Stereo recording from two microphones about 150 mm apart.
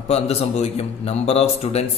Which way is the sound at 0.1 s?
45° left (ahead or behind).